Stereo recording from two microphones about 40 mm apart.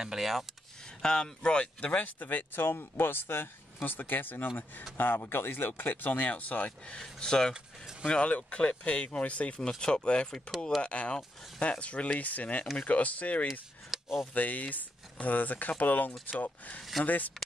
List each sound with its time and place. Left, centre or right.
0.0 s speech: centre
1.0 s speech: centre
2.1 s speech: left
5.7 s speech: left
7.0 s speech: centre
7.5 s speech: centre
8.1 s speech: left
9.6 s speech: centre
10.8 s speech: left
13.5 s a sound: centre
14.2 s speech: left